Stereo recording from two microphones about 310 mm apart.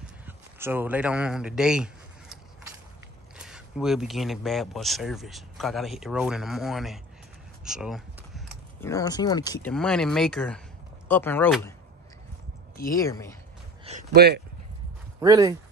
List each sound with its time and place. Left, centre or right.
0.6 s speech: centre
3.3 s speech: centre
8.8 s speech: centre
12.9 s speech: centre
13.8 s speech: right
15.1 s speech: centre